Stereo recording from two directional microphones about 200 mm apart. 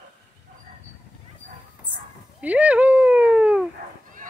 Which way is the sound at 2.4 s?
5° right (ahead or behind).